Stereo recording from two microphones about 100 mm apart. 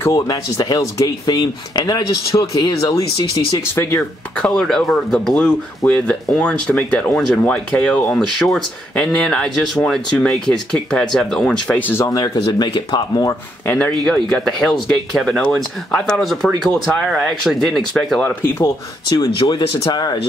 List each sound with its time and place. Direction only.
0.1 s speech: 40° left (ahead or behind)
4.4 s speech: 5° left (ahead or behind)
12.0 s speech: 35° left (ahead or behind)
12.4 s speech: 55° left (ahead or behind)
13.7 s speech: 15° left (ahead or behind)
14.0 s speech: 5° left (ahead or behind)
18.4 s speech: 20° left (ahead or behind)
19.0 s speech: 50° left (ahead or behind)